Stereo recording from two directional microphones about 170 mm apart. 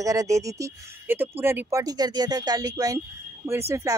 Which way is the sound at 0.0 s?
20° right (ahead or behind).